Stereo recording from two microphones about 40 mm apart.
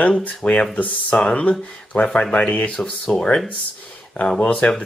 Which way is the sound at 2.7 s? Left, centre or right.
Centre.